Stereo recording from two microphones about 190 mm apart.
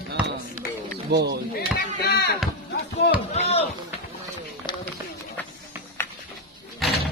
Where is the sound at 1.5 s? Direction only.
55° left (ahead or behind).